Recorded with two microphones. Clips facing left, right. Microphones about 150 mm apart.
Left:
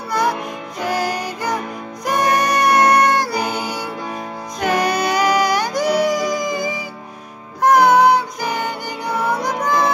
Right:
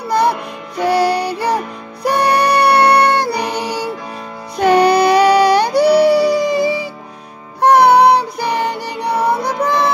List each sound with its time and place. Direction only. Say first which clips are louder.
0.1 s music: right 4 dB; 30° right (ahead or behind)
3.3 s music: right 2 dB; 70° right (ahead or behind)
4.6 s music: right 8 dB; 30° right (ahead or behind)